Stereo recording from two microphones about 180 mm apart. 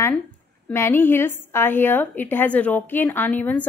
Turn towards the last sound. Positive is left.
turn(degrees=10)  # may be behind; listen again after turning